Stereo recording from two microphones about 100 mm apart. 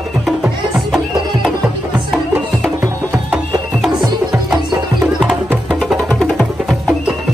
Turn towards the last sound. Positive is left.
turn(degrees=5)  # may be behind; listen again after turning